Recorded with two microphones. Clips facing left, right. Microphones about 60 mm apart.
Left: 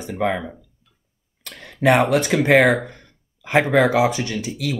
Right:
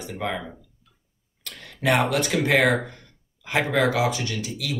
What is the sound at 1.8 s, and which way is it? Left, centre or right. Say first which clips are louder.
Speech: left 5 dB; left.